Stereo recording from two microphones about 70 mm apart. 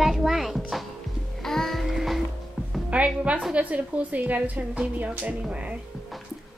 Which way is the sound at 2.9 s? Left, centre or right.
Centre.